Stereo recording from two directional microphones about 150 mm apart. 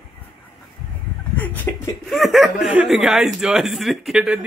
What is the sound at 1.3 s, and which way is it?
Chuckle, 10° left (ahead or behind).